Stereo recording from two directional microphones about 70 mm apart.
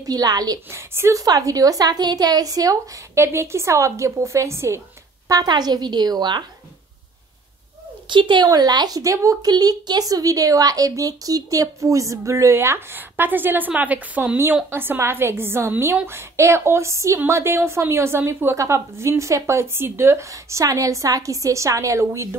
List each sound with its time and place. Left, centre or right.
0.0 s a woman's voice: right
0.7 s a woman's voice: right
1.2 s a woman's voice: right
3.2 s a woman's voice: right
5.3 s a woman's voice: right
8.3 s a woman's voice: right
9.5 s a woman's voice: right